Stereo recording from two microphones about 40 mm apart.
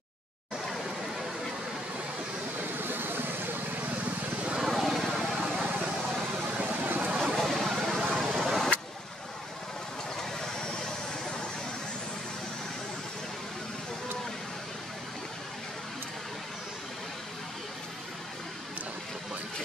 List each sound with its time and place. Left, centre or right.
2.8 s vehicle: right
4.0 s vehicle: right
4.6 s vehicle: centre
6.4 s vehicle: right
7.2 s a sound: centre
7.9 s vehicle: centre
8.3 s vehicle: centre